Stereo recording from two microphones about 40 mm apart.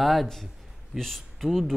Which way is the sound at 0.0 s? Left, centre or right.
Centre.